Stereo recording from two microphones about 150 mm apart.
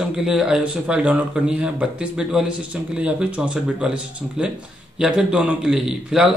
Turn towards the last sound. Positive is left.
turn(degrees=-5)  # may be behind; listen again after turning